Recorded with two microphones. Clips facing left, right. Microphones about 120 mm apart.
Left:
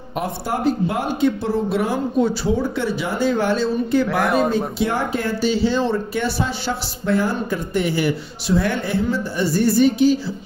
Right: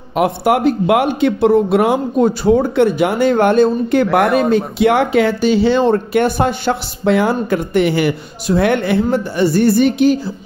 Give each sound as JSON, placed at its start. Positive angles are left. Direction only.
{"t": 0.1, "sound": "speech", "side_deg": -75}